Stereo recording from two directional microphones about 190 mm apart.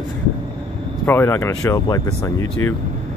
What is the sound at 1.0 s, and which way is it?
Speech, 15° left (ahead or behind).